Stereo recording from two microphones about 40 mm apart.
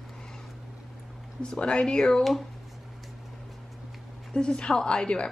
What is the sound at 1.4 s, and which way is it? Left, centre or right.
Speech, left.